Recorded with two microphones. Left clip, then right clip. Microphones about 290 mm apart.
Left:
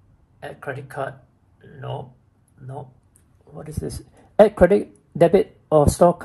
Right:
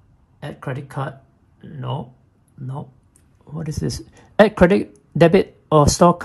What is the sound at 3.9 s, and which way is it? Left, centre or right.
Speech, left.